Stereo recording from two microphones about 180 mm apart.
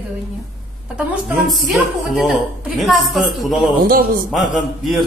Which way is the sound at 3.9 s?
55° right (ahead or behind).